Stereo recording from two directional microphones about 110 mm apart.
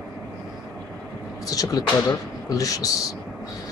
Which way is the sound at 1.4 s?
30° left (ahead or behind).